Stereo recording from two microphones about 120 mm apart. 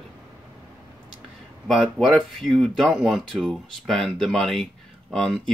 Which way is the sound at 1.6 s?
Centre (ahead or behind).